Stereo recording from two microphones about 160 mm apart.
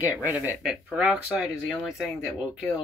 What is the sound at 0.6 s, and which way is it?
Speech, centre (ahead or behind).